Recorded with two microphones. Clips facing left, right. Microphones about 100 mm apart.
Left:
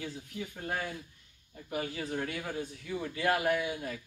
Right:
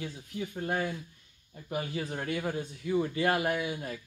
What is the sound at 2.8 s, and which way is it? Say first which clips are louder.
Speech: right 5 dB; 25° right (ahead or behind).